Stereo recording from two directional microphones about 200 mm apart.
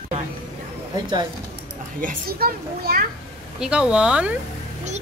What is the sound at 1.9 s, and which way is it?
A child's voice, 45° right (ahead or behind).